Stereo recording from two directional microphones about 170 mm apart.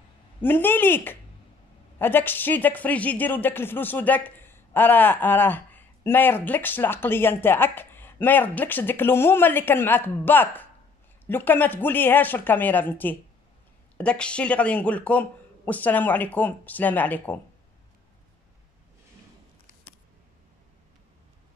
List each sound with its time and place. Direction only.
0.4 s speech: 10° left (ahead or behind)